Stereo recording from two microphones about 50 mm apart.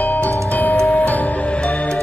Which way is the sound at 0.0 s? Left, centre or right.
Left.